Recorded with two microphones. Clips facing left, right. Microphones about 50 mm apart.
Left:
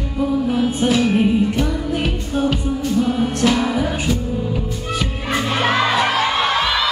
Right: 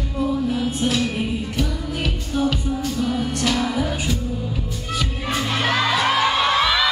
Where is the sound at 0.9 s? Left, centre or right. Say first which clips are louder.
Left 7 dB; left.